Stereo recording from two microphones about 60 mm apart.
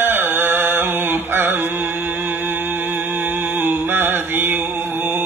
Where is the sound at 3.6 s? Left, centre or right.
Right.